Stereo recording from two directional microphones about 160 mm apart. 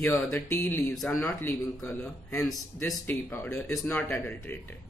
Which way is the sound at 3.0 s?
15° left (ahead or behind).